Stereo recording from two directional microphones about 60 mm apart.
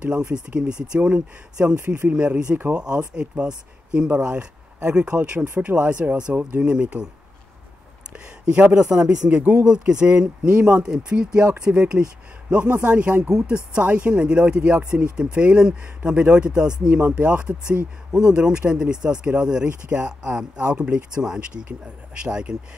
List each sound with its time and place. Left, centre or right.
0.0 s speech: centre
8.1 s speech: centre